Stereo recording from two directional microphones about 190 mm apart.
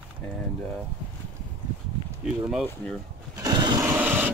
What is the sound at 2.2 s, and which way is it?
Speech, centre (ahead or behind).